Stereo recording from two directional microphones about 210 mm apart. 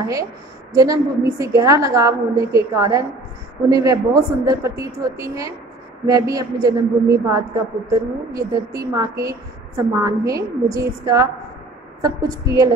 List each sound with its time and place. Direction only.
0.0 s a woman's voice: 15° right (ahead or behind)